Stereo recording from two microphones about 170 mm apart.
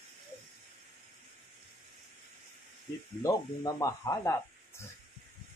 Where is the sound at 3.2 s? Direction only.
20° left (ahead or behind).